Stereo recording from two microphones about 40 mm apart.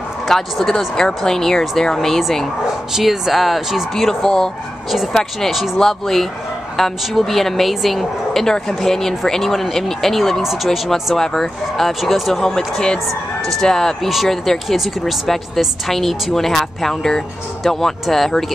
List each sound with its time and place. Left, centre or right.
0.3 s a woman's voice: centre
5.8 s a woman's voice: centre
11.1 s a woman's voice: centre
12.4 s a woman's voice: centre